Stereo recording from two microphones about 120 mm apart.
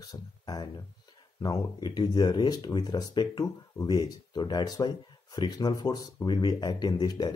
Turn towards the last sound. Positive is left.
turn(degrees=35)  # may be behind; listen again after turning